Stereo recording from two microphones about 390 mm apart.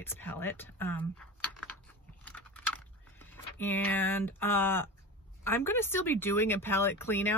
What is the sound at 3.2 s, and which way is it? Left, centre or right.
Speech, centre.